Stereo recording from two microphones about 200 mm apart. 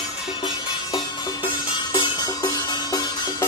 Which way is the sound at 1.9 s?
20° left (ahead or behind).